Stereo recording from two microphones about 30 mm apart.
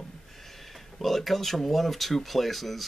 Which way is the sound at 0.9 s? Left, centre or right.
Centre.